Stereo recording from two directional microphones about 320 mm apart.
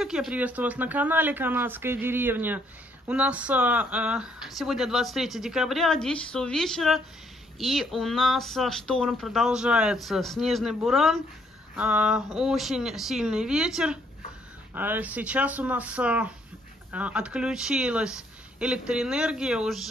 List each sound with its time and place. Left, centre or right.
0.0 s speech: centre